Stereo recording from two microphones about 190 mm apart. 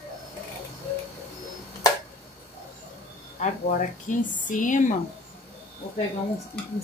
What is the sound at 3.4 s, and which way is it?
Speech, 40° left (ahead or behind).